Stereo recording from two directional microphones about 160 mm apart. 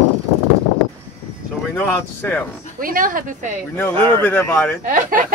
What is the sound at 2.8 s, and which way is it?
Speech, 60° right (ahead or behind).